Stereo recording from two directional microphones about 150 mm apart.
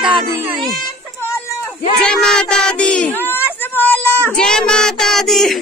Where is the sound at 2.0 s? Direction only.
5° left (ahead or behind).